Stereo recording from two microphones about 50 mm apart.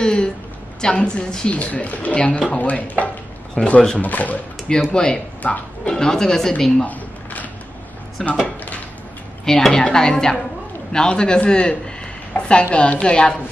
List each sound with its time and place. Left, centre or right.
0.0 s a woman's voice: centre
1.5 s speech: left
4.9 s a woman's voice: centre
5.4 s speech: left
5.9 s a woman's voice: centre
8.2 s speech: centre
9.4 s a woman's voice: centre